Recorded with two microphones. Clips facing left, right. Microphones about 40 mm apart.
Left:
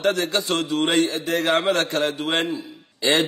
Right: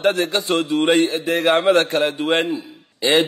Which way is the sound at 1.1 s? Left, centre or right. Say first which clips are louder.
Right 4 dB; right.